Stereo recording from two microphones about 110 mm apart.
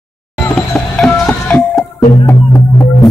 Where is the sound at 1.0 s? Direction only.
10° left (ahead or behind).